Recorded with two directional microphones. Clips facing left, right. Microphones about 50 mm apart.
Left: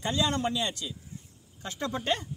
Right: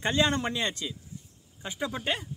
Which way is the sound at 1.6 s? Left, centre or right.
Centre.